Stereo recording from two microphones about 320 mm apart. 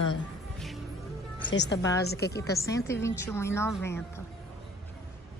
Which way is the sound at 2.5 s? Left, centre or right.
Centre.